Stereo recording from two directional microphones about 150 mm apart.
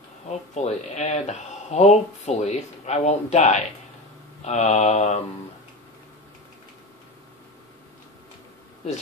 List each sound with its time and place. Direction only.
0.3 s speech: 50° left (ahead or behind)